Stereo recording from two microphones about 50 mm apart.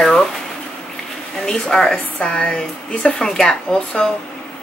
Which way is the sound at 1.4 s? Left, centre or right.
Centre.